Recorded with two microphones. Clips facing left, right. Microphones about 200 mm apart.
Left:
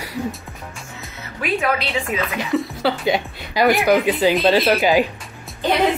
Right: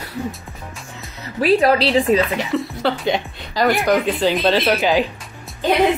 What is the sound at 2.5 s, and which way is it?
Speech, centre (ahead or behind).